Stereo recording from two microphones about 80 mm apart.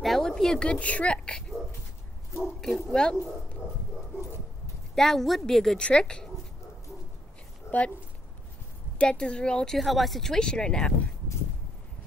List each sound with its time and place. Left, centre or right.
0.0 s a woman's voice: centre
2.6 s speech: centre
4.9 s speech: centre
7.7 s a sound: left
8.9 s speech: centre
9.8 s speech: centre